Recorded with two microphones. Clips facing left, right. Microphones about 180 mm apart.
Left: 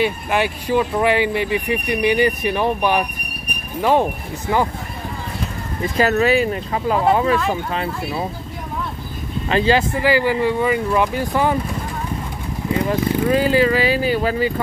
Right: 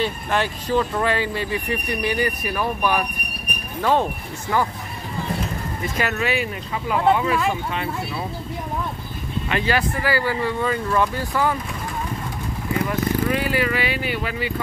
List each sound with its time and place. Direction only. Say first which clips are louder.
0.0 s speech: left 4 dB; 15° left (ahead or behind)
5.9 s speech: left 8 dB; 35° left (ahead or behind)
9.5 s speech: left 6 dB; 30° left (ahead or behind)
12.9 s speech: left 5 dB; 30° left (ahead or behind)